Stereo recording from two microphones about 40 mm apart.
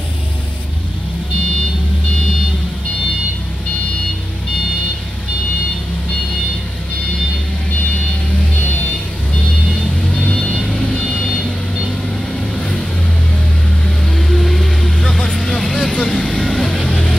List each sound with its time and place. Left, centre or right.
9.7 s vehicle: left
12.5 s vehicle: left
13.8 s vehicle: centre
15.0 s vehicle: left
16.8 s music: left